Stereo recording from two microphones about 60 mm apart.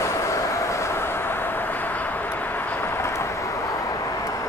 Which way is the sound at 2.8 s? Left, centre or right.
Left.